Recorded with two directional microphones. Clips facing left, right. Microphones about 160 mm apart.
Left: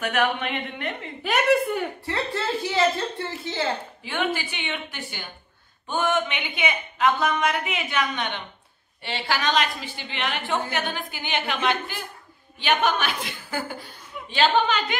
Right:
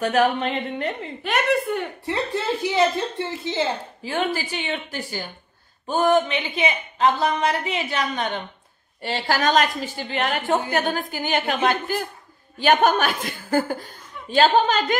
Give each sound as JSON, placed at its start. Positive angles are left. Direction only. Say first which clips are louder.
{"t": 0.0, "sound": "speech", "louder": "right 5 dB", "side_deg": -35}
{"t": 1.2, "sound": "a woman's voice", "louder": "left 1 dB", "side_deg": 0}
{"t": 2.0, "sound": "a woman's voice", "louder": "right 7 dB", "side_deg": -15}
{"t": 4.0, "sound": "a woman's voice", "louder": "right 3 dB", "side_deg": -35}